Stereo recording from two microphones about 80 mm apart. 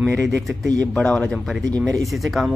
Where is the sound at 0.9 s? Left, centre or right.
Centre.